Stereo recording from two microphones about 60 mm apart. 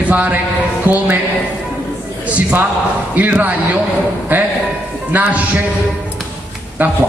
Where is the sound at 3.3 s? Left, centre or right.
Right.